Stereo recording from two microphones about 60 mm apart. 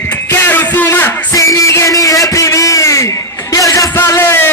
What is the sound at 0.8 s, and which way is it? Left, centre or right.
Music, left.